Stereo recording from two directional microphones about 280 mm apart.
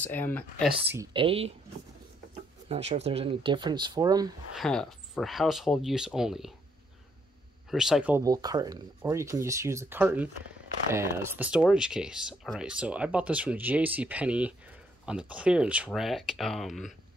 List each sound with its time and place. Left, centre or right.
0.0 s speech: centre
0.8 s speech: centre
2.7 s speech: right
4.6 s speech: centre
7.7 s speech: centre